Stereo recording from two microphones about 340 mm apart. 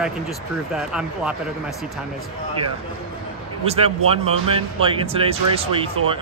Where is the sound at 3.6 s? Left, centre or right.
Centre.